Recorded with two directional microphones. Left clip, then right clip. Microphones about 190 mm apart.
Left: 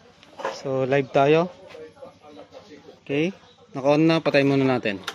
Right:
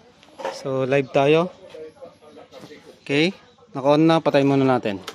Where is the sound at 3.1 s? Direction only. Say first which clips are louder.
Right 4 dB; 10° right (ahead or behind).